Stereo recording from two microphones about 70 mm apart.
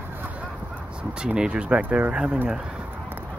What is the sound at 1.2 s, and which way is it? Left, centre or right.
Speech, centre.